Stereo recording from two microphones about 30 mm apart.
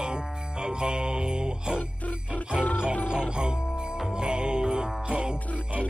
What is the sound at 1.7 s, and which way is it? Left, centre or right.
Music, left.